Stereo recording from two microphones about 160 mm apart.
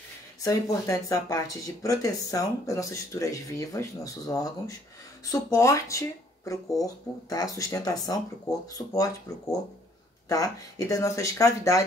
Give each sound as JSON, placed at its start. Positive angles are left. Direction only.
{"t": 0.4, "sound": "speech", "side_deg": 20}